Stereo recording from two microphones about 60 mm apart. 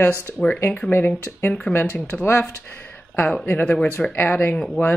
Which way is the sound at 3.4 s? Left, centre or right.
Left.